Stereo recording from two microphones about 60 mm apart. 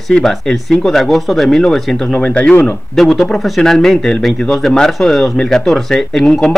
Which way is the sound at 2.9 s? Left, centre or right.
Centre.